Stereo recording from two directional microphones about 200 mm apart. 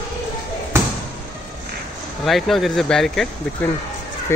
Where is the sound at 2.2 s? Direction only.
Centre (ahead or behind).